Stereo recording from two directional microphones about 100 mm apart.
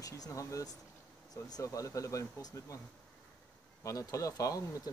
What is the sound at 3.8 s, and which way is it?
Speech, 35° left (ahead or behind).